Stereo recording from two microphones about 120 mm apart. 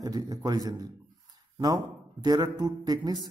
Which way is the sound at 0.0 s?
30° right (ahead or behind).